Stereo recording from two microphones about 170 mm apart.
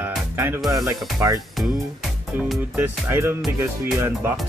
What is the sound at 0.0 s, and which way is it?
Music, 15° right (ahead or behind).